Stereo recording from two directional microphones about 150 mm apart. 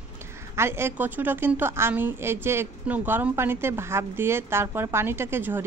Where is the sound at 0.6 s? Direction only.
15° right (ahead or behind).